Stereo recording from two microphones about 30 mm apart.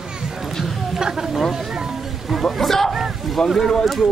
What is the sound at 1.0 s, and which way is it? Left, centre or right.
Speech, right.